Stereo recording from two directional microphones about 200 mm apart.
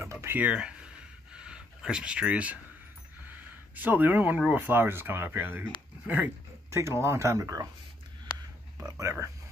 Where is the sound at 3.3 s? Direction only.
10° right (ahead or behind).